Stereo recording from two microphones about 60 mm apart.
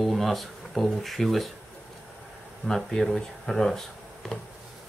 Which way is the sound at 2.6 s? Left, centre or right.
Centre.